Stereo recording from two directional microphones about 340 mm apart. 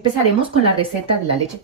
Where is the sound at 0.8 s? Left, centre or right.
Centre.